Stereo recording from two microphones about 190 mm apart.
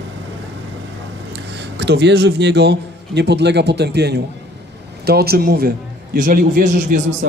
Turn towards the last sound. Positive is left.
turn(degrees=-45)  # may be behind; listen again after turning